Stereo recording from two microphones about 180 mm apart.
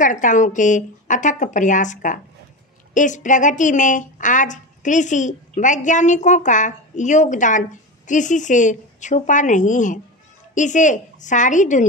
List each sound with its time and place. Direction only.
0.0 s a woman's voice: 45° left (ahead or behind)